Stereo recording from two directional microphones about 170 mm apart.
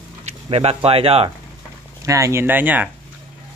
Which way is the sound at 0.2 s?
40° right (ahead or behind).